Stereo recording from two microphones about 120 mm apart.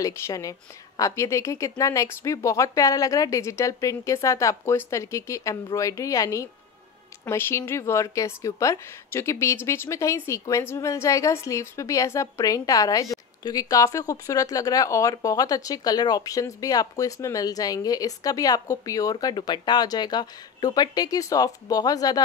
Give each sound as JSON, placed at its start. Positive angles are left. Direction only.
{"t": 0.0, "sound": "a woman's voice", "side_deg": 30}